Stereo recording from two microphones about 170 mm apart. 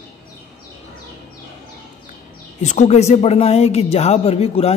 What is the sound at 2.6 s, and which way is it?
Speech, 40° left (ahead or behind).